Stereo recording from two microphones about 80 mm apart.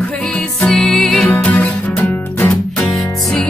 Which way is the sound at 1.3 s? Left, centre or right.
Left.